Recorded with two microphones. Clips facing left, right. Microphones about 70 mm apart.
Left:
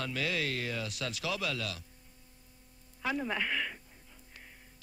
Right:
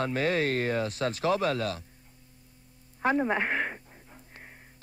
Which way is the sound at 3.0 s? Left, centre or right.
Right.